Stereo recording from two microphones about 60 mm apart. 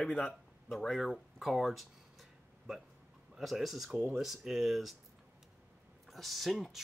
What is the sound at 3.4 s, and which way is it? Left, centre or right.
Speech, centre.